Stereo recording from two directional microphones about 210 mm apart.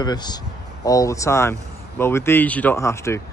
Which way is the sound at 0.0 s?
20° left (ahead or behind).